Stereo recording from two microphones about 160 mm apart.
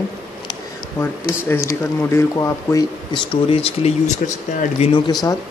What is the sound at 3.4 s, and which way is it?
Speech, 40° left (ahead or behind).